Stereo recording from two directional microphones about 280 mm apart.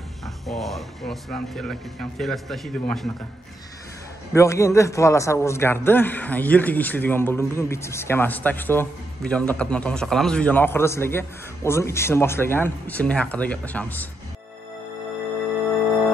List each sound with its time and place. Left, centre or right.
0.5 s speech: centre
4.3 s a man's voice: centre